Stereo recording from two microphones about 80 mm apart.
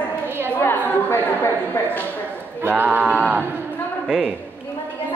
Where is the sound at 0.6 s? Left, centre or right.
Left.